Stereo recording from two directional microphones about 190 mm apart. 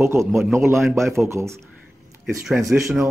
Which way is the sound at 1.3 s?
15° right (ahead or behind).